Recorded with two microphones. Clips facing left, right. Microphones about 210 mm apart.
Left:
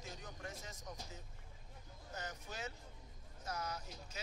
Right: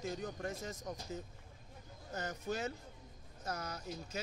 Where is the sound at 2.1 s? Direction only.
50° right (ahead or behind).